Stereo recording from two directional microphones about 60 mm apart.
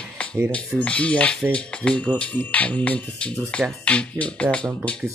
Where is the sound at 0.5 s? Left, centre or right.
Left.